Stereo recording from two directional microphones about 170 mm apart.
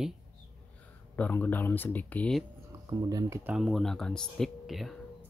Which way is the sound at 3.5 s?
Centre (ahead or behind).